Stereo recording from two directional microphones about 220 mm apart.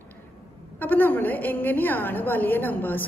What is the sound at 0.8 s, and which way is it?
A woman's voice, 10° left (ahead or behind).